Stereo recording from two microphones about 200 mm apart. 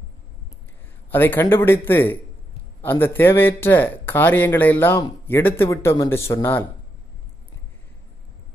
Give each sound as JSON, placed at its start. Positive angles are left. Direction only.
{"t": 1.1, "sound": "speech", "side_deg": 10}